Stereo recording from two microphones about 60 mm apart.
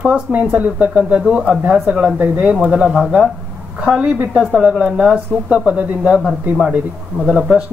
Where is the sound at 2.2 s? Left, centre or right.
Right.